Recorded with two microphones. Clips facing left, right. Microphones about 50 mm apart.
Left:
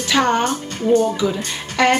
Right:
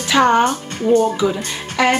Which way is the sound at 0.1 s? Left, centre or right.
Centre.